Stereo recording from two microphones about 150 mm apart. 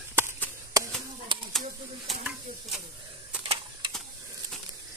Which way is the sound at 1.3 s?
30° right (ahead or behind).